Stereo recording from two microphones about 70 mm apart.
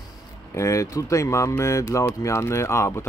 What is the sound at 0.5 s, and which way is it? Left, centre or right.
Speech, left.